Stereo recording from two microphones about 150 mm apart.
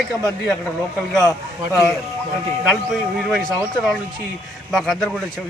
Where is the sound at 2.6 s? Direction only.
Centre (ahead or behind).